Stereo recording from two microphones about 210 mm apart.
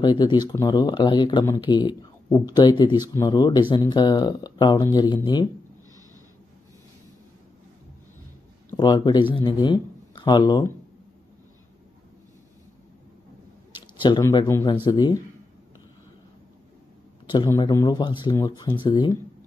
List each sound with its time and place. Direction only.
0.0 s speech: 20° left (ahead or behind)
8.6 s speech: 20° left (ahead or behind)
14.0 s speech: 20° left (ahead or behind)
17.3 s speech: 20° left (ahead or behind)